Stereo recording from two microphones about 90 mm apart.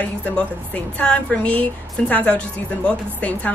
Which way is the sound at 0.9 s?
10° left (ahead or behind).